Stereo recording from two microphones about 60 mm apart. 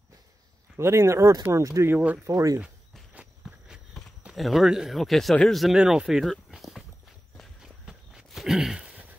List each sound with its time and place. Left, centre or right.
0.7 s speech: right
1.9 s speech: right
2.2 s speech: right
3.4 s walk: centre
4.3 s speech: centre
5.8 s speech: centre
6.0 s speech: centre
6.5 s walk: centre